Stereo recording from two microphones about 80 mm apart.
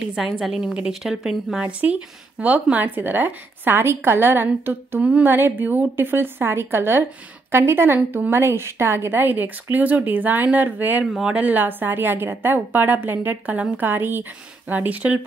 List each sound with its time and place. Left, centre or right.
0.0 s a woman's voice: centre
1.6 s a woman's voice: centre
5.0 s a woman's voice: centre